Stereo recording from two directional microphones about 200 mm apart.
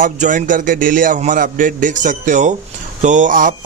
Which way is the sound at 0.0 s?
40° right (ahead or behind).